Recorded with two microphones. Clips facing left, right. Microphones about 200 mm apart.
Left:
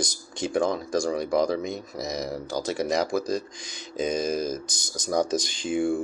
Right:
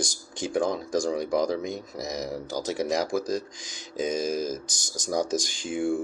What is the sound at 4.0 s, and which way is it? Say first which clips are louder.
Speech: left 1 dB; 10° right (ahead or behind).